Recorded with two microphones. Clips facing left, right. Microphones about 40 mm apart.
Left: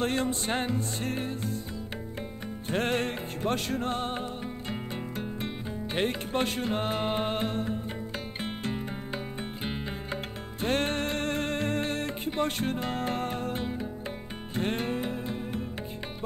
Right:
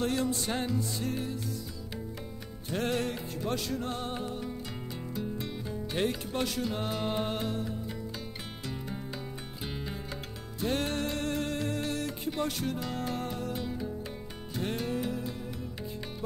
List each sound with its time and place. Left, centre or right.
0.0 s music: left
2.7 s music: left
10.6 s music: left